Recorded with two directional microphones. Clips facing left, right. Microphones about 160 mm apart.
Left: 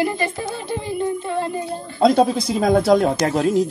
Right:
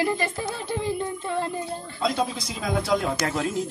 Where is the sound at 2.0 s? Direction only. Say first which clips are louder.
Left 11 dB; 40° left (ahead or behind).